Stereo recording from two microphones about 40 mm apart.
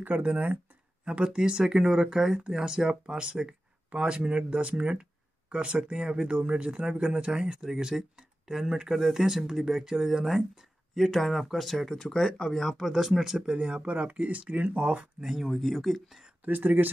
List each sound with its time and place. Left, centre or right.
0.0 s speech: right
1.2 s speech: right
8.9 s speech: centre
12.9 s speech: centre
13.6 s speech: right
15.1 s speech: centre
16.4 s speech: right